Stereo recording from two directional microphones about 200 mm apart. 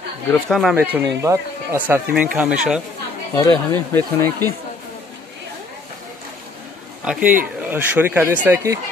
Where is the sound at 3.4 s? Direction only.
15° left (ahead or behind).